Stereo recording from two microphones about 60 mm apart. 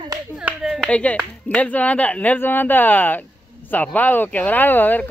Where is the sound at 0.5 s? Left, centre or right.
Right.